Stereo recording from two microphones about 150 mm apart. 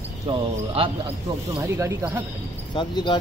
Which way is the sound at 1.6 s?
20° right (ahead or behind).